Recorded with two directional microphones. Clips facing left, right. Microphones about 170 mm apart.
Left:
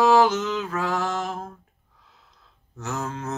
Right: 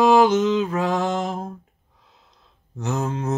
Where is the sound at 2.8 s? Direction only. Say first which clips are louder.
Right 5 dB; 20° right (ahead or behind).